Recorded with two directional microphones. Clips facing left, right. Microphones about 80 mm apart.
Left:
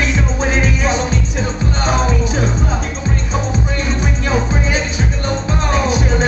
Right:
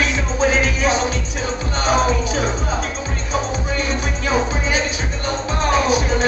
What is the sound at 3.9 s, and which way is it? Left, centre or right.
Music, left.